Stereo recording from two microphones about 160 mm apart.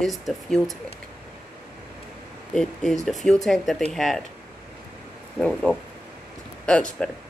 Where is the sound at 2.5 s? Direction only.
5° left (ahead or behind).